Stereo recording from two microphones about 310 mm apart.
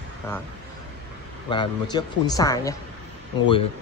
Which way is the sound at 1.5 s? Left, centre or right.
Centre.